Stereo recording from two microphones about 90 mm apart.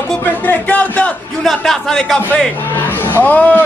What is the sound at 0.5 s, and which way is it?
Speech, 15° left (ahead or behind).